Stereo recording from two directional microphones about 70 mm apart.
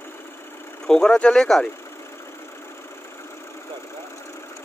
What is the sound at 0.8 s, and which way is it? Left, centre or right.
Speech, centre.